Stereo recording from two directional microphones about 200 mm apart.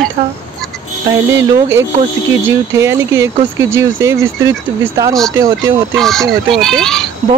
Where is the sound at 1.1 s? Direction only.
15° right (ahead or behind).